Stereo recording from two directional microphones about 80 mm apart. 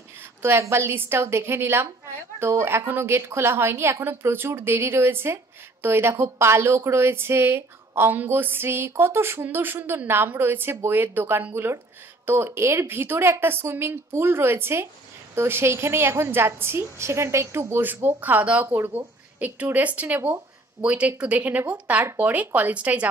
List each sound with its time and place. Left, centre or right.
0.4 s a woman's voice: right; by 23.0 s centre